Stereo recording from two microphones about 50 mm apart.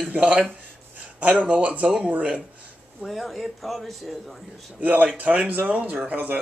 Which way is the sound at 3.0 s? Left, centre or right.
Centre.